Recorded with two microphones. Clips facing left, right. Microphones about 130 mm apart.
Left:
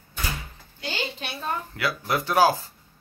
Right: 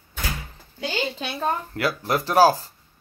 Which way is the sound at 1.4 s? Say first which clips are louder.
Right 4 dB; 40° right (ahead or behind).